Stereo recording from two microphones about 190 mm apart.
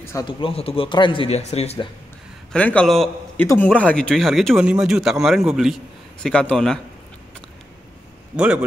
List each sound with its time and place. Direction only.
0.0 s speech: 15° left (ahead or behind)
0.4 s a man's voice: 30° left (ahead or behind)
2.5 s a man's voice: 5° left (ahead or behind)